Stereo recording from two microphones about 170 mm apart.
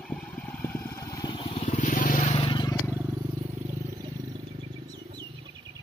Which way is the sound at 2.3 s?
30° left (ahead or behind).